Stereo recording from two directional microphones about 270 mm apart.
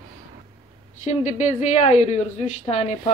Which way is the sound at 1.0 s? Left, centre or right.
Left.